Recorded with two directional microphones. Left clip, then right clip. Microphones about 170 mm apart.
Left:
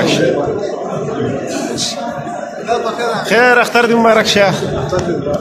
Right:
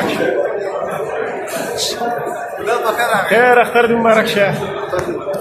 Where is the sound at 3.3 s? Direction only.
20° left (ahead or behind).